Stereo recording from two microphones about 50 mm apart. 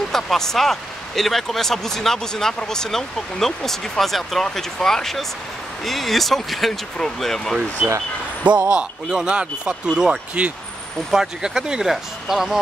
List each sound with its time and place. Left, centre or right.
0.1 s speech: centre
8.5 s speech: centre